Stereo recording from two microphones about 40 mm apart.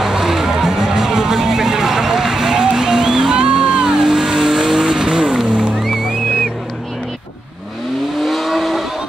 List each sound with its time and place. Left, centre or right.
0.0 s vehicle: centre
4.0 s vehicle: centre
5.5 s music: right
8.2 s vehicle: centre